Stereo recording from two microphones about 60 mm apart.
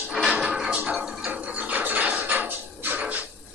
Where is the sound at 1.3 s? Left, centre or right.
Right.